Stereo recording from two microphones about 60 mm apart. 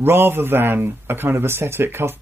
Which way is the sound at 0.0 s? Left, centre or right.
Right.